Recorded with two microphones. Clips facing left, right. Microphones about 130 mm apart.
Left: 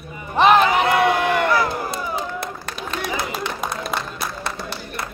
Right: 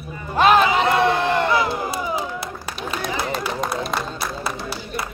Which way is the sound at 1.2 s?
20° right (ahead or behind).